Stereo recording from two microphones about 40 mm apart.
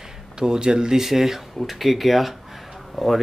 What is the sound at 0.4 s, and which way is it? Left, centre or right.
Speech, right.